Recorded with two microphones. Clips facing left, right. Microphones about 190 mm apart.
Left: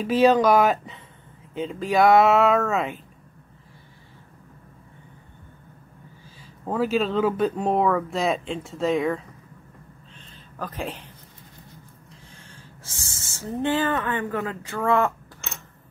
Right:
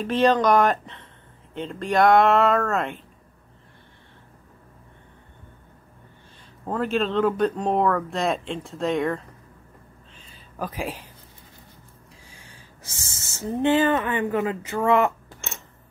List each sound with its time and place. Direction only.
0.0 s speech: 5° left (ahead or behind)
6.6 s speech: 5° left (ahead or behind)
10.1 s a sound: 10° right (ahead or behind)
12.3 s speech: 10° right (ahead or behind)